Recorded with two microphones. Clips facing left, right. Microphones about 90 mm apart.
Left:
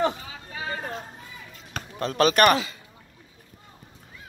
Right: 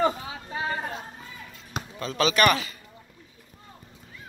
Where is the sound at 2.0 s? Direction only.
50° left (ahead or behind).